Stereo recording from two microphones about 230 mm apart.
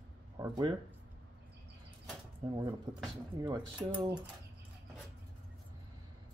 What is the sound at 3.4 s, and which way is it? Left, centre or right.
Speech, centre.